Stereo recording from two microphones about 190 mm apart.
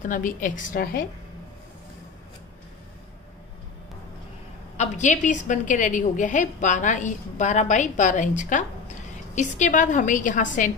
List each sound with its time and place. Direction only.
0.0 s a woman's voice: 45° left (ahead or behind)
4.7 s a woman's voice: 40° left (ahead or behind)